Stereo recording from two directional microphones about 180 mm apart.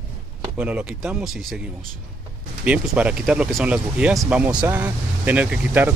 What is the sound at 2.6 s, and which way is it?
Speech, 5° right (ahead or behind).